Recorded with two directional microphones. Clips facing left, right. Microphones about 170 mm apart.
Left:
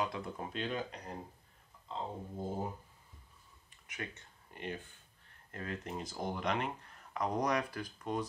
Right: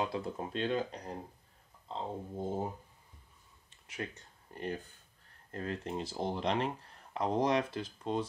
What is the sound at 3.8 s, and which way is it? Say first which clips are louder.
Speech: right 4 dB; 35° right (ahead or behind).